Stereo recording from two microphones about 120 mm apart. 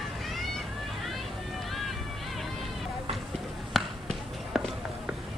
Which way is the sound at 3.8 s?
Centre (ahead or behind).